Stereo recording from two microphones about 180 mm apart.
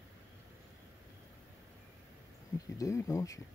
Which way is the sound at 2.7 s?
20° left (ahead or behind).